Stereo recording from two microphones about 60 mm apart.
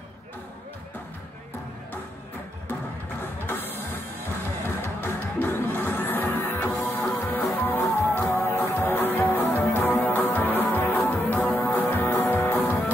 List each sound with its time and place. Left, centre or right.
3.4 s music: left